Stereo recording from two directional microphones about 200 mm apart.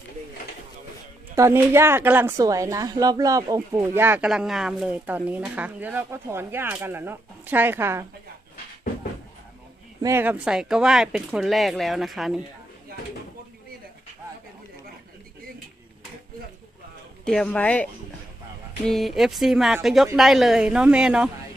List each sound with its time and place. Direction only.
1.3 s a woman's voice: 10° right (ahead or behind)
10.0 s speech: 10° right (ahead or behind)
17.2 s speech: 5° left (ahead or behind)
18.9 s speech: centre (ahead or behind)